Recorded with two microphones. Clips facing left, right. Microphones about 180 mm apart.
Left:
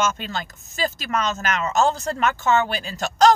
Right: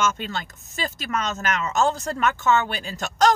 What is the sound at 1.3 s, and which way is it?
Speech, 40° left (ahead or behind).